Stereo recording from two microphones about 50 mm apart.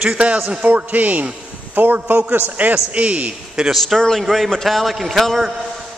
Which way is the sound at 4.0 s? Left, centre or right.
Centre.